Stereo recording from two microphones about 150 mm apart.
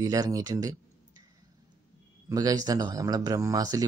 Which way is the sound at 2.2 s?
25° right (ahead or behind).